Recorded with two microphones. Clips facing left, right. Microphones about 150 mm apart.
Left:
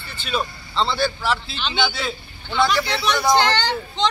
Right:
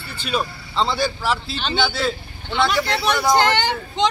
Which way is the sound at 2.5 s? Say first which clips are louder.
Even; 20° right (ahead or behind).